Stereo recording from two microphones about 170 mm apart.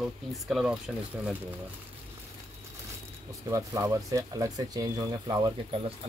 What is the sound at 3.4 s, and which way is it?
Speech, 20° right (ahead or behind).